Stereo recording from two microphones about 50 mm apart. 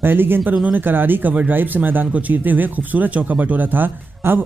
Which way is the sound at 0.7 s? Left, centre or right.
Right.